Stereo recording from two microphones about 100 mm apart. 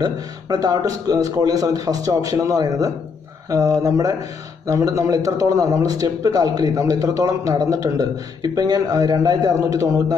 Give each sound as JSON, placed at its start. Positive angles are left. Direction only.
{"t": 0.0, "sound": "a man's voice", "side_deg": -40}